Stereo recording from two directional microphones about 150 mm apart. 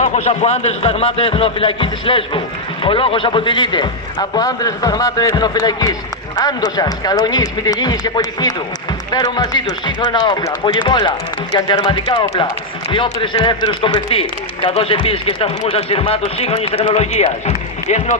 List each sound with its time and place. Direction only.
0.0 s a man's voice: 50° left (ahead or behind)